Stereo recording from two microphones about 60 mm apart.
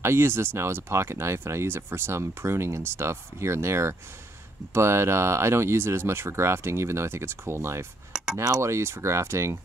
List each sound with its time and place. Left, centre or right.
0.0 s speech: right
8.5 s speech: right